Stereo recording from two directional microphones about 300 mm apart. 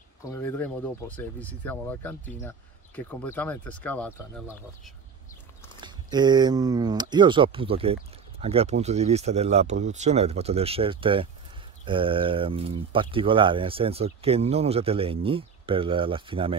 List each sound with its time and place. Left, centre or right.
0.2 s speech: centre
5.8 s speech: centre